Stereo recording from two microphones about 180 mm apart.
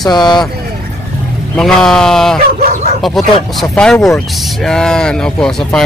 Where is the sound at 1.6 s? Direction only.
5° left (ahead or behind).